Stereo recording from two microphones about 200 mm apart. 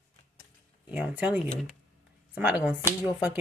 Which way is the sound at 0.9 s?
5° right (ahead or behind).